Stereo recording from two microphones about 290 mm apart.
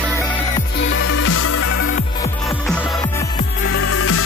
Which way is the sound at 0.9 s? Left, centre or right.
Left.